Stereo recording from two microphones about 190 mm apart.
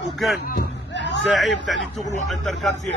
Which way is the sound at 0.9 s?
65° left (ahead or behind).